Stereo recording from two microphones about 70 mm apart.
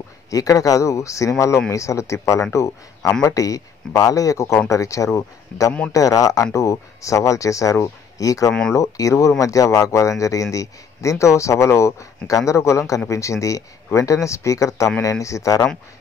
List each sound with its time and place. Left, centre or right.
0.3 s a man's voice: left
6.5 s a man's voice: left